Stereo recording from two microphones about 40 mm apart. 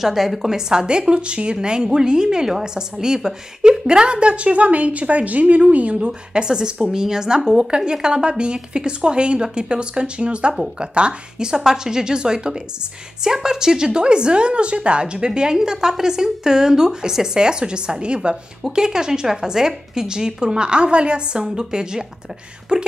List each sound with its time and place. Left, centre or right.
0.0 s a woman's voice: centre; by 6.1 s right
6.3 s a woman's voice: right